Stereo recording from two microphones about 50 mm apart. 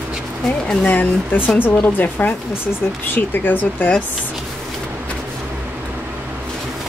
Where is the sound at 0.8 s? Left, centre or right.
Left.